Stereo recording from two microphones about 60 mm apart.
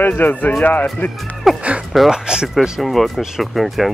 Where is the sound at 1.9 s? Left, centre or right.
Centre.